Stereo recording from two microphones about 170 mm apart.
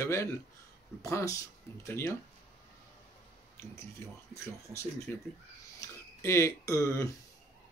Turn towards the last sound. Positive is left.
turn(degrees=20)  # may be behind; listen again after turning